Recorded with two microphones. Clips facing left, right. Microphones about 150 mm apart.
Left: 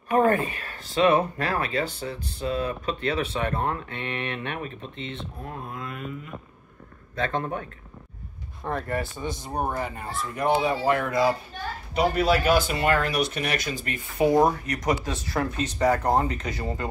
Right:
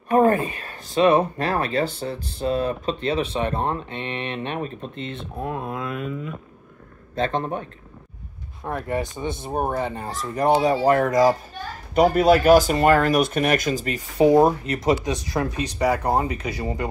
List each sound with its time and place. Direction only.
0.1 s a sound: 35° right (ahead or behind)
1.0 s speech: 30° right (ahead or behind); by 5.2 s 45° right (ahead or behind)
5.4 s speech: 90° right
7.2 s speech: 25° right (ahead or behind)
8.6 s speech: 10° right (ahead or behind)
8.9 s speech: 20° right (ahead or behind)
10.3 s speech: 35° right (ahead or behind)
13.8 s speech: 35° right (ahead or behind)
15.0 s speech: 15° right (ahead or behind)